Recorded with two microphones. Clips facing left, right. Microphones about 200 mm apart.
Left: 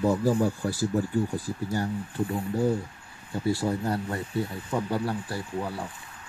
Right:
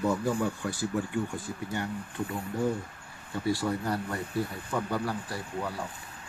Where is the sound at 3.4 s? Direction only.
25° left (ahead or behind).